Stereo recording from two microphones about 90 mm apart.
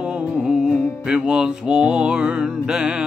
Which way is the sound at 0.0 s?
10° right (ahead or behind).